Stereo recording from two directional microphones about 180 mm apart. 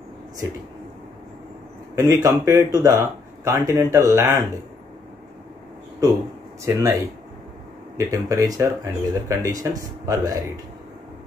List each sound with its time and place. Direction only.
2.0 s speech: 20° right (ahead or behind)
6.6 s speech: 15° right (ahead or behind)
8.1 s speech: 20° right (ahead or behind)